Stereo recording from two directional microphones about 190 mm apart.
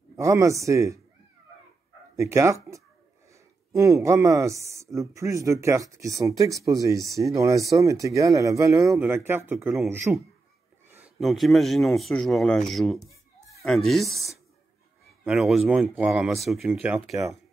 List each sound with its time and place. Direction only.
0.2 s a man's voice: 15° right (ahead or behind)
2.1 s a man's voice: 15° right (ahead or behind)